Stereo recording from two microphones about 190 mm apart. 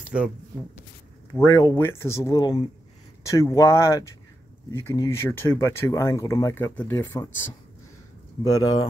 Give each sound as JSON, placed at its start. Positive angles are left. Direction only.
{"t": 0.0, "sound": "a sound", "side_deg": -5}
{"t": 1.3, "sound": "speech", "side_deg": 15}
{"t": 8.5, "sound": "speech", "side_deg": 20}